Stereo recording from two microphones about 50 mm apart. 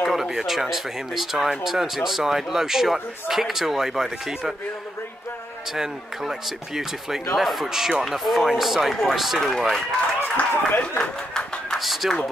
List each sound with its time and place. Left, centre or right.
0.0 s speech: centre
5.7 s speech: centre
10.2 s a sound: left
11.7 s speech: centre